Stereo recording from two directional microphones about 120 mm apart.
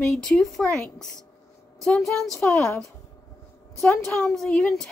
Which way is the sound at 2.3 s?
25° left (ahead or behind).